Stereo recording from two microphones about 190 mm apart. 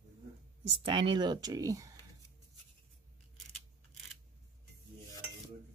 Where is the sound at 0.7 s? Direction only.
25° right (ahead or behind).